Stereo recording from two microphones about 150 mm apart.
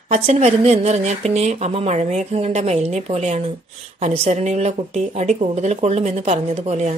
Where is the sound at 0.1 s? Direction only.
45° right (ahead or behind).